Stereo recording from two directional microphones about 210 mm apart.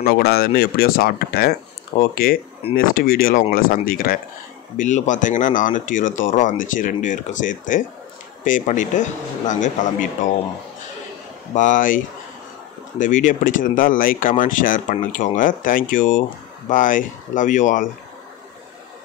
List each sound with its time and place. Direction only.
0.1 s speech: 45° left (ahead or behind)
11.5 s speech: 40° left (ahead or behind)
13.0 s speech: 40° left (ahead or behind)